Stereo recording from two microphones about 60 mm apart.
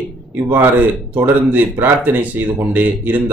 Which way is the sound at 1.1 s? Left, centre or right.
Right.